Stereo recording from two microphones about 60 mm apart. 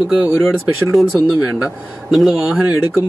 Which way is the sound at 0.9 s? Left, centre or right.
Centre.